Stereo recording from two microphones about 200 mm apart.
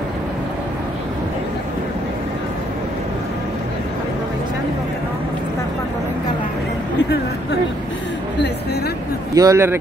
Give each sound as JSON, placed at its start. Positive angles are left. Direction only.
{"t": 9.3, "sound": "speech", "side_deg": -15}